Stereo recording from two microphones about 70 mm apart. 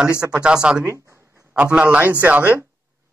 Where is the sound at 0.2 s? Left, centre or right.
Centre.